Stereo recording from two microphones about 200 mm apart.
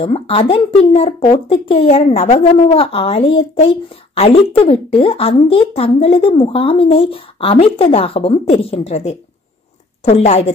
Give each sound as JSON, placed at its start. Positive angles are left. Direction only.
{"t": 0.0, "sound": "a woman's voice", "side_deg": 30}